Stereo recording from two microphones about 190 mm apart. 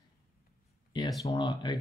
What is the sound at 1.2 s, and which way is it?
Speech, 25° left (ahead or behind).